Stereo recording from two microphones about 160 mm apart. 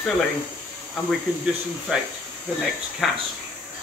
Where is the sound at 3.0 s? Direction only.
Centre (ahead or behind).